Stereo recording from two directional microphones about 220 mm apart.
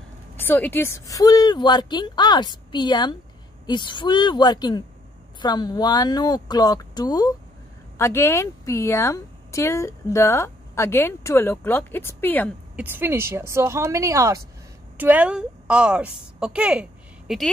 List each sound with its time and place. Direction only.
0.4 s speech: 10° left (ahead or behind)
12.7 s a woman's voice: 10° right (ahead or behind)